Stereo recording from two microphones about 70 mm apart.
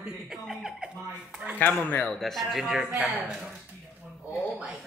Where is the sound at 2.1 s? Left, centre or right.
Centre.